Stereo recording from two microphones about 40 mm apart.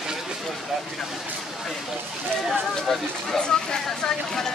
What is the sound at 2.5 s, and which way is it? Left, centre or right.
Speech, centre.